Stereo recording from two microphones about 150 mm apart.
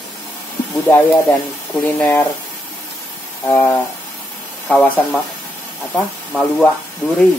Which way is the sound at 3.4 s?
10° left (ahead or behind).